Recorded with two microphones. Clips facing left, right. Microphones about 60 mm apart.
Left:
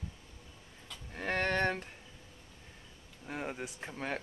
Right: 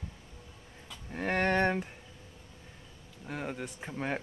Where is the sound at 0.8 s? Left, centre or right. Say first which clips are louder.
Right 3 dB; centre.